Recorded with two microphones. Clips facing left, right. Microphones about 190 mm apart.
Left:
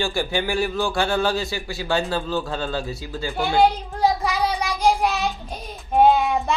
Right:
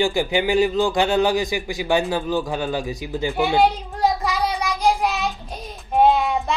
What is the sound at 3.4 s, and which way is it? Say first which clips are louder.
Child singing: even; centre (ahead or behind).